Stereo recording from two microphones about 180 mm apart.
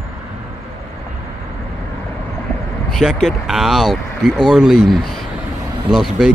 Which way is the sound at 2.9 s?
Centre (ahead or behind).